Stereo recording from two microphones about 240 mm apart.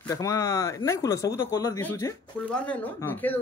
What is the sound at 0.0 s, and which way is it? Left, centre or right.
Speech, centre.